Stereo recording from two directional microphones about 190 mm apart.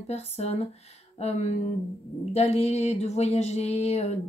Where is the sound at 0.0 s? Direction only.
35° left (ahead or behind).